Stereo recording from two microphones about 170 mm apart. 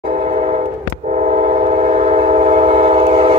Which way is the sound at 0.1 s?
45° right (ahead or behind).